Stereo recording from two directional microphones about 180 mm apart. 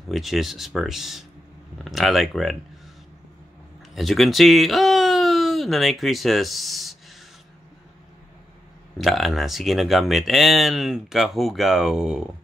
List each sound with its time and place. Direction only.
0.1 s speech: centre (ahead or behind)
3.9 s speech: centre (ahead or behind)
8.9 s speech: centre (ahead or behind)